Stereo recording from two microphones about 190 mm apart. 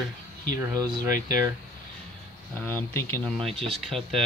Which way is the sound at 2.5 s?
10° left (ahead or behind).